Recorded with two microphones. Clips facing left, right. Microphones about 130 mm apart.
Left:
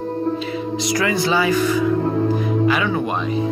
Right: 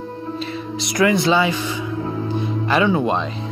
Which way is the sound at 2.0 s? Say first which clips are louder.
Left 5 dB; 50° left (ahead or behind).